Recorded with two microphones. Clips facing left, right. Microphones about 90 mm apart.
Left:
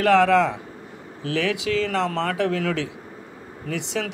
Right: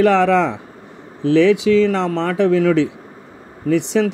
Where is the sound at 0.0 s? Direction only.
25° right (ahead or behind).